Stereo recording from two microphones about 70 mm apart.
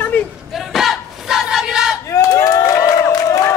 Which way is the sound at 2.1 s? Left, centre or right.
Left.